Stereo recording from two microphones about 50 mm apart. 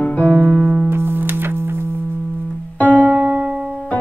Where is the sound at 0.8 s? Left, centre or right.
Right.